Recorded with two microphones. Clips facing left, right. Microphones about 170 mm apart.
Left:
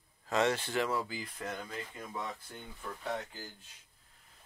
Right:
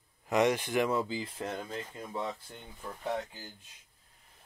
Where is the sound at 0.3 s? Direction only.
15° right (ahead or behind).